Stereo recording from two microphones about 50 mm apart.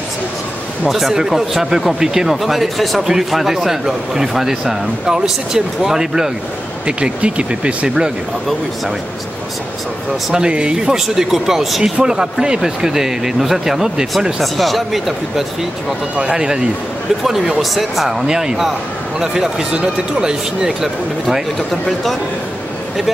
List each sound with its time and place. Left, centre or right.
0.8 s speech: centre
6.9 s speech: right
10.3 s speech: centre
16.2 s speech: centre
17.2 s speech: centre